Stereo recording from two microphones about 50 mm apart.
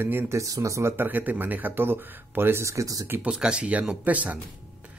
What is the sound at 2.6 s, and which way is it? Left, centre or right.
Speech, right.